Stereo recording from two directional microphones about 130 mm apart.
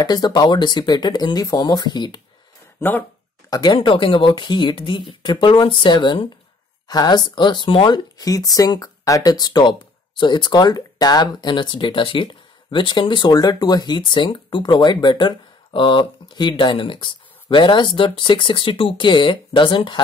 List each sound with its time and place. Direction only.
0.0 s speech: 30° left (ahead or behind)
2.8 s speech: 20° left (ahead or behind)
3.4 s speech: 30° left (ahead or behind)